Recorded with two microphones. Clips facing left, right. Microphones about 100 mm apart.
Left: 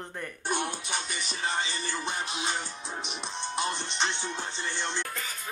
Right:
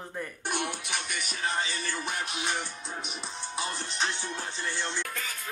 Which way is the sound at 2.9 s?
25° left (ahead or behind).